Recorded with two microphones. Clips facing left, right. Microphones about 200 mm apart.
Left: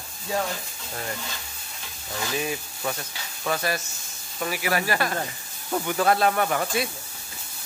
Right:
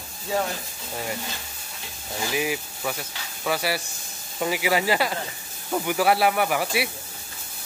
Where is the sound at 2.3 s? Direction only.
10° right (ahead or behind).